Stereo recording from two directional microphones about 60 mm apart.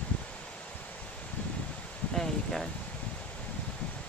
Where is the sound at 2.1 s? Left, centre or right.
Centre.